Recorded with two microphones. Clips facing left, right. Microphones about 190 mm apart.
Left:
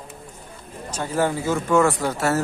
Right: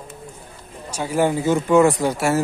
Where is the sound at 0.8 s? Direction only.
10° right (ahead or behind).